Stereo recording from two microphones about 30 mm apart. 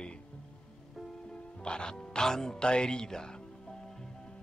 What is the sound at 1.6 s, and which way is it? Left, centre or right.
Speech, left.